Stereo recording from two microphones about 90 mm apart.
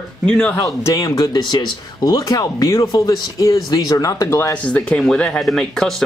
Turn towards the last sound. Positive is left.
turn(degrees=5)  # may be behind; listen again after turning